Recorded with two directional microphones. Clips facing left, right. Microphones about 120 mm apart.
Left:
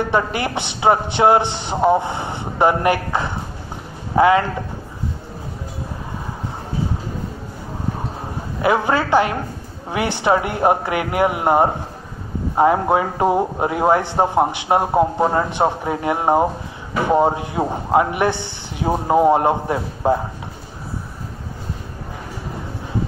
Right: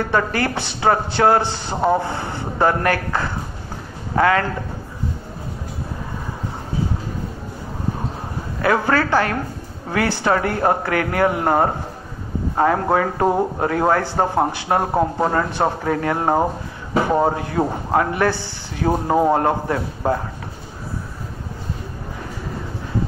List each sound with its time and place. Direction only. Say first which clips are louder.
0.0 s a man's voice: even; 20° left (ahead or behind)
8.5 s a woman's voice: even; 20° left (ahead or behind)